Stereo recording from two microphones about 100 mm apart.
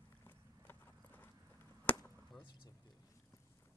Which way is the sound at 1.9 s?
15° left (ahead or behind).